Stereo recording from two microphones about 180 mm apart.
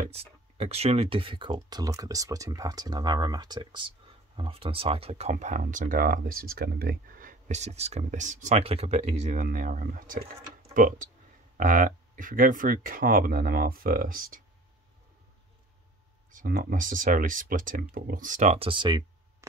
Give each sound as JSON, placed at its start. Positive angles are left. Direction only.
{"t": 0.1, "sound": "speech", "side_deg": -35}
{"t": 16.3, "sound": "speech", "side_deg": -50}